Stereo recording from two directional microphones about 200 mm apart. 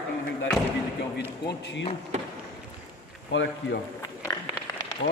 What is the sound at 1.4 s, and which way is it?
Speech, 60° left (ahead or behind).